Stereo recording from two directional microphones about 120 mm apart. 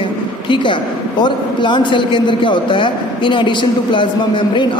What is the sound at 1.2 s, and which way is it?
A man's voice, 40° left (ahead or behind).